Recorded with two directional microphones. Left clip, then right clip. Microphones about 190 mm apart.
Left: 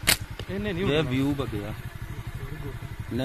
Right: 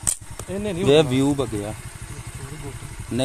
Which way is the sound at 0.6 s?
70° right (ahead or behind).